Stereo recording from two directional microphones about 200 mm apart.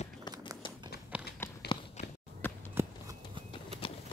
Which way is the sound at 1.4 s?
10° left (ahead or behind).